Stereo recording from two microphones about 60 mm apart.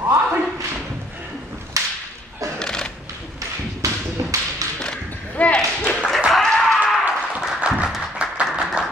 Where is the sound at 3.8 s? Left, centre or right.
Right.